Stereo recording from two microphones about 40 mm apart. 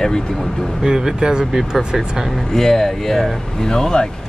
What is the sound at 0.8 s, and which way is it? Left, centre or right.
Speech, centre.